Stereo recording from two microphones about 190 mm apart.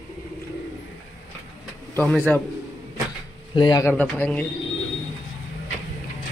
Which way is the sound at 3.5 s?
25° left (ahead or behind).